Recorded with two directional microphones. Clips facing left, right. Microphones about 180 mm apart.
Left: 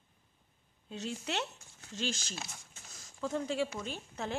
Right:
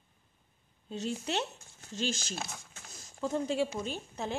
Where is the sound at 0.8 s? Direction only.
35° right (ahead or behind).